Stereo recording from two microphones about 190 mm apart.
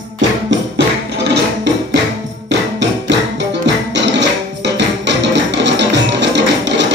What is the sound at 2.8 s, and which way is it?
Music, 65° right (ahead or behind).